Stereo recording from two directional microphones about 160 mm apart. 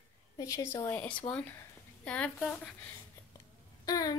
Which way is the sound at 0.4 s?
20° left (ahead or behind).